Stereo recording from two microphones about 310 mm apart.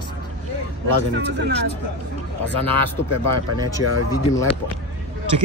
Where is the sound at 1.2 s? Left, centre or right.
Right.